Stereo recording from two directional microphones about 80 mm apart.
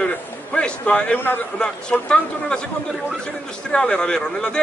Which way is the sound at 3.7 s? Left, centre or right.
Centre.